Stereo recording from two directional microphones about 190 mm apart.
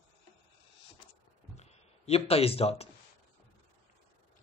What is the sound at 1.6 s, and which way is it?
Speech, 35° left (ahead or behind).